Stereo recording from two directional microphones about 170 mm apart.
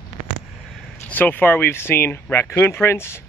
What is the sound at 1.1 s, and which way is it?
Speech, 10° left (ahead or behind).